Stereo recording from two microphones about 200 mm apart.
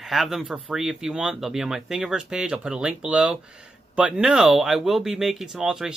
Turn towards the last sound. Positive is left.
turn(degrees=-5)  # may be behind; listen again after turning